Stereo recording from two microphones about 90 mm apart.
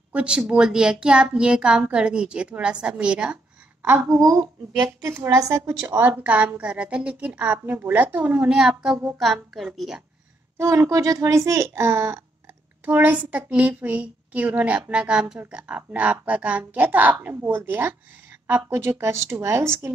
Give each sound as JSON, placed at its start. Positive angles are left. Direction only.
{"t": 0.1, "sound": "a woman's voice", "side_deg": -10}
{"t": 3.8, "sound": "a woman's voice", "side_deg": -25}
{"t": 5.2, "sound": "a woman's voice", "side_deg": -35}
{"t": 8.5, "sound": "a woman's voice", "side_deg": -5}
{"t": 10.6, "sound": "a child's voice", "side_deg": -35}